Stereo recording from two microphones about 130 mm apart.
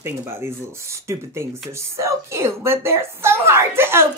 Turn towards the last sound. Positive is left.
turn(degrees=-20)  # may be behind; listen again after turning